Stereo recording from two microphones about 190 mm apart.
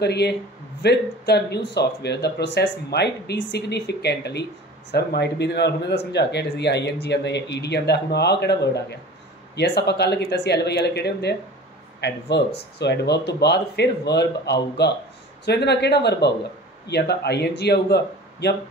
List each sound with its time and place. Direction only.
0.0 s speech: 60° left (ahead or behind)